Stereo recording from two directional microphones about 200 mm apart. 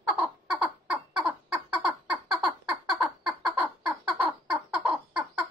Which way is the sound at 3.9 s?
5° right (ahead or behind).